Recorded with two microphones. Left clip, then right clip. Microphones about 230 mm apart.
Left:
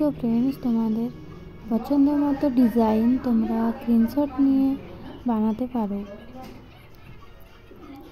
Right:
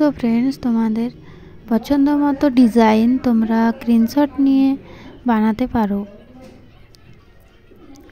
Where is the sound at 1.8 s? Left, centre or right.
Centre.